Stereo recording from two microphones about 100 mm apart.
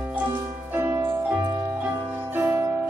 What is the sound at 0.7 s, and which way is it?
Music, 30° right (ahead or behind).